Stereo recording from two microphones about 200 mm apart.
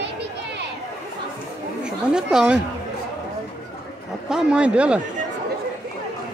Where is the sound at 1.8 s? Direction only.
5° right (ahead or behind).